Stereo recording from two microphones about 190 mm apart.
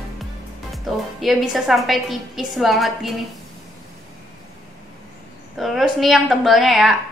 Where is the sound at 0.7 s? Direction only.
Centre (ahead or behind).